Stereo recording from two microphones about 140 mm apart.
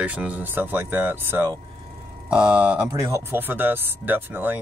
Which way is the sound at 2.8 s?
20° right (ahead or behind).